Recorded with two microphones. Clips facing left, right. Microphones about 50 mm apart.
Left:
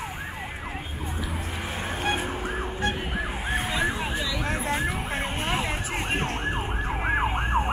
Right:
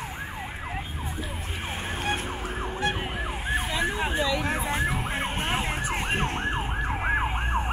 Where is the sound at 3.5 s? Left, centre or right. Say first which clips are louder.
Left 1 dB; left.